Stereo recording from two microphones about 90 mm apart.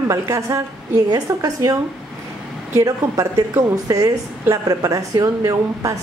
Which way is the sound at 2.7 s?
35° right (ahead or behind).